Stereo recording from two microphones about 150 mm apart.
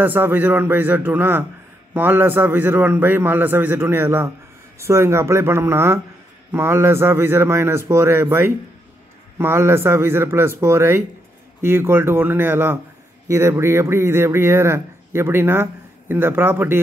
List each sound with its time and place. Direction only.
0.0 s speech: 15° right (ahead or behind)